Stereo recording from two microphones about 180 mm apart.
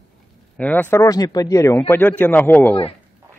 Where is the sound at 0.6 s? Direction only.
10° left (ahead or behind).